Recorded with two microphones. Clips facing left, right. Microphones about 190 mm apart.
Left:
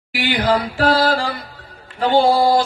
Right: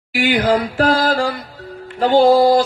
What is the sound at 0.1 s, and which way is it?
Female singing, 50° right (ahead or behind).